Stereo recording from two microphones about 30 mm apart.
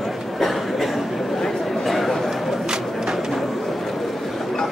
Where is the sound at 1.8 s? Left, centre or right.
Centre.